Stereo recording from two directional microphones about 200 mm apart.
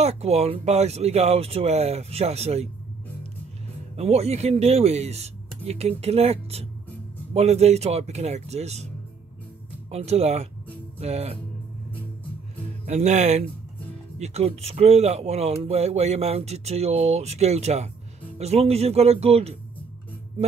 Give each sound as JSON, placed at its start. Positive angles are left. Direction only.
{"t": 0.0, "sound": "speech", "side_deg": -30}
{"t": 3.9, "sound": "speech", "side_deg": -30}
{"t": 9.8, "sound": "speech", "side_deg": -30}
{"t": 12.8, "sound": "speech", "side_deg": -35}